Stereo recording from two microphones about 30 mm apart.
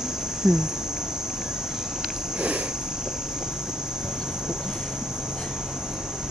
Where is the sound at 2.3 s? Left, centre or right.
Right.